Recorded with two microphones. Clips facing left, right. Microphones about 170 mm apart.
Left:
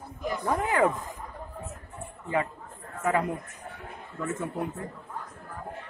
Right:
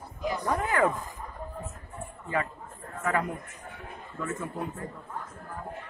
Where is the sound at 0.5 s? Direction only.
20° left (ahead or behind).